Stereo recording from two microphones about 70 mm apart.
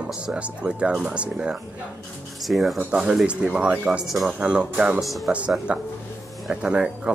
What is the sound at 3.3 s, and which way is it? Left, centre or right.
Speech, centre.